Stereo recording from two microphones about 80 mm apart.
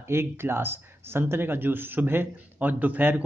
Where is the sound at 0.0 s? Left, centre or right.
Right.